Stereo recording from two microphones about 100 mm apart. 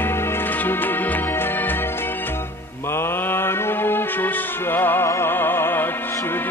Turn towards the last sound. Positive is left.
turn(degrees=20)  # may be behind; listen again after turning